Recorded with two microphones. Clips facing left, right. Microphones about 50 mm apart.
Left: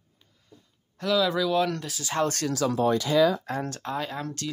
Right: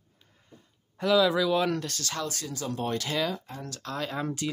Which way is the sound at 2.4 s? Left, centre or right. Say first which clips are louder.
Left 8 dB; left.